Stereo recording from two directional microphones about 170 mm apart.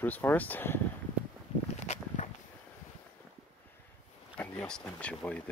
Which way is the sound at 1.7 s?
45° left (ahead or behind).